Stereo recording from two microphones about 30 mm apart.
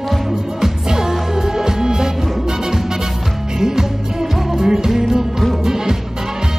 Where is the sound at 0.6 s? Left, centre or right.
Centre.